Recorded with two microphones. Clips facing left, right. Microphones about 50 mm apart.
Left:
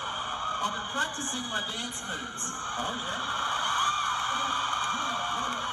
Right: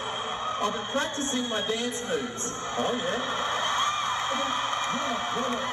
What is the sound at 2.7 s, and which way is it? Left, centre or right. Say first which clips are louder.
A man's voice: right 6 dB; right.